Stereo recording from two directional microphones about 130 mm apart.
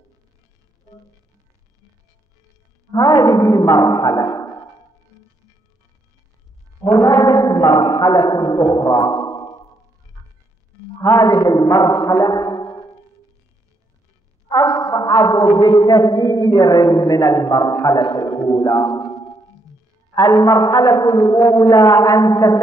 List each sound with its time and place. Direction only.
2.9 s a man's voice: 30° left (ahead or behind)
6.8 s a sound: 25° left (ahead or behind)
11.0 s a man's voice: 30° left (ahead or behind)
14.5 s a man's voice: 25° left (ahead or behind)
20.2 s a man's voice: 30° left (ahead or behind)